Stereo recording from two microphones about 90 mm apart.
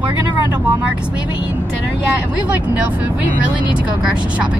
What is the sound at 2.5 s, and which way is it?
Speech, 15° right (ahead or behind).